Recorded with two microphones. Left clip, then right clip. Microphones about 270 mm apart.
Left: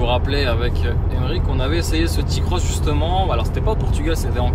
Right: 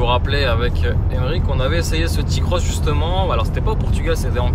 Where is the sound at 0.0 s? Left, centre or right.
Centre.